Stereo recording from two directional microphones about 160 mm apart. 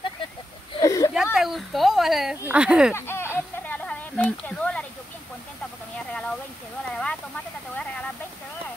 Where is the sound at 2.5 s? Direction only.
5° right (ahead or behind).